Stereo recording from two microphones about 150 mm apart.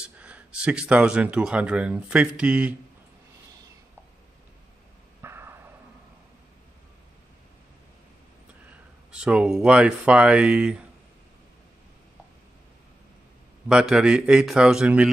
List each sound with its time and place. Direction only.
0.0 s speech: 10° right (ahead or behind)
5.2 s a sound: 15° right (ahead or behind)
9.1 s speech: 5° right (ahead or behind)
13.7 s a man's voice: 5° right (ahead or behind)